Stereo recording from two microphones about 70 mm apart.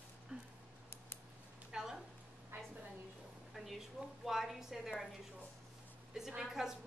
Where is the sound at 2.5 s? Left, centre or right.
Right.